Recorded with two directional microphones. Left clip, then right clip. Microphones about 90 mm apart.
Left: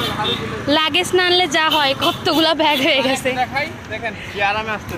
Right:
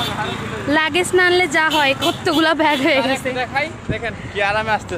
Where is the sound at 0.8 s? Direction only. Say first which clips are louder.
Right 1 dB; 10° right (ahead or behind).